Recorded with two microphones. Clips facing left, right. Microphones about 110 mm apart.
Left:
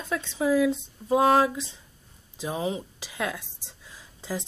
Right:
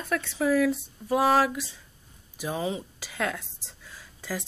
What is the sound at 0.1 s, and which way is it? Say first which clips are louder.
A woman's voice: even; 20° left (ahead or behind).